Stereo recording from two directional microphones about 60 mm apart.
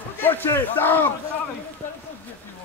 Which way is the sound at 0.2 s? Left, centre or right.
Left.